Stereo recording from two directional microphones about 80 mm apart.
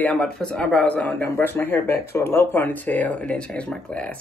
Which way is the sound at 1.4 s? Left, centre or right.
Left.